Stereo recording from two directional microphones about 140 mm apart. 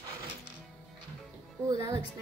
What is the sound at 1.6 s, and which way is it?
Speech, 20° right (ahead or behind).